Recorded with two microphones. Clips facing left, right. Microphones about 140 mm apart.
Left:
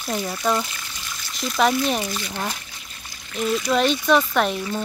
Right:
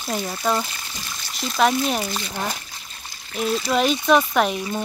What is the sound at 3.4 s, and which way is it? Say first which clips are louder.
Speech: even; 35° right (ahead or behind).